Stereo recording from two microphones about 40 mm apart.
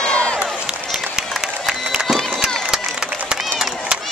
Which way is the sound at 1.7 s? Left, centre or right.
Centre.